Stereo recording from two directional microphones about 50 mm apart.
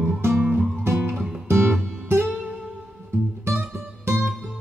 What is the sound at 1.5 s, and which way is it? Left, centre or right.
Music, right.